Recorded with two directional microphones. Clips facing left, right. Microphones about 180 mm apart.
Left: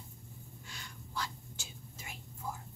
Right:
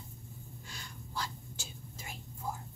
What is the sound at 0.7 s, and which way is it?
Snort, 35° right (ahead or behind).